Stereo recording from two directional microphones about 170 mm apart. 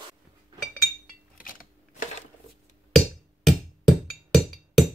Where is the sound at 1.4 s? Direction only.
55° left (ahead or behind).